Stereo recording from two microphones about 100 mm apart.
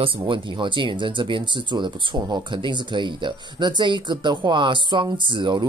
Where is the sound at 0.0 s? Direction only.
55° right (ahead or behind).